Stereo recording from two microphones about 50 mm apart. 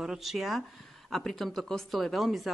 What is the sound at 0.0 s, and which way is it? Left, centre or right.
A woman's voice, centre.